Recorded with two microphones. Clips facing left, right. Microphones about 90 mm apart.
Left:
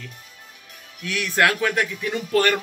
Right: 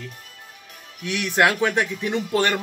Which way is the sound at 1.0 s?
20° right (ahead or behind).